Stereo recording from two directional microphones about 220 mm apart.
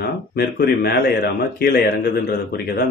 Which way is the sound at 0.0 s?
45° left (ahead or behind).